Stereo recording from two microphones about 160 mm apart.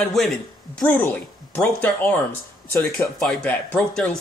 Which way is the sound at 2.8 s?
Centre (ahead or behind).